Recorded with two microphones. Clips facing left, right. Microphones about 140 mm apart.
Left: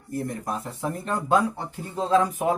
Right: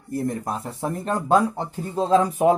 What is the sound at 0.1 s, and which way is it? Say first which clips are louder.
Speech: right 3 dB; 35° right (ahead or behind).